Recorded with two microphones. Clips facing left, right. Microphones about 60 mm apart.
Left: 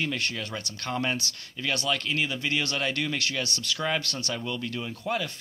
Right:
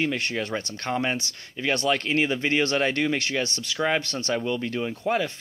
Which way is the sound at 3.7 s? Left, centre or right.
Centre.